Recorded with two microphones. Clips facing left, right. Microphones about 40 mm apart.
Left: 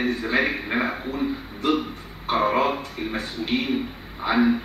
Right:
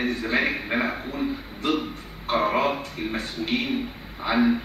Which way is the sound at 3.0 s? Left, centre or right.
Centre.